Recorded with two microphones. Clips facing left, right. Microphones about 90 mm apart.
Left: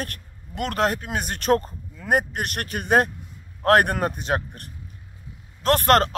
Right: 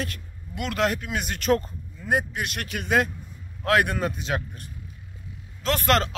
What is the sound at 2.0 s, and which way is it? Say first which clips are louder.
Speech: left 3 dB; 55° left (ahead or behind).